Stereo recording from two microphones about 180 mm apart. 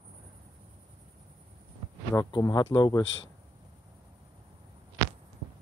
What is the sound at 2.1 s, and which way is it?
Speech, 20° left (ahead or behind).